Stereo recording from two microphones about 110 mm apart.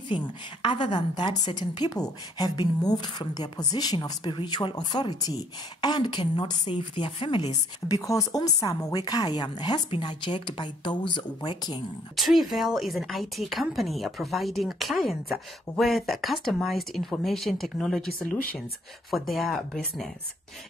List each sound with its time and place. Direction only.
0.1 s a woman's voice: 45° left (ahead or behind)
12.2 s speech: centre (ahead or behind)
19.0 s speech: centre (ahead or behind)